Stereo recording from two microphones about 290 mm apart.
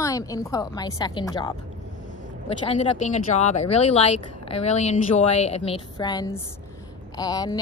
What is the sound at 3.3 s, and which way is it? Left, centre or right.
Speech, left.